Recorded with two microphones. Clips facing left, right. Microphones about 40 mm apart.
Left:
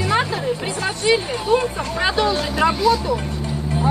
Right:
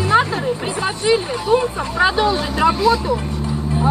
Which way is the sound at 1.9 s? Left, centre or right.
Centre.